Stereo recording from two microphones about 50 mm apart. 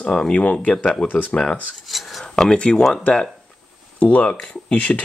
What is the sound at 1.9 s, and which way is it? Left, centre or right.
Cutlery, centre.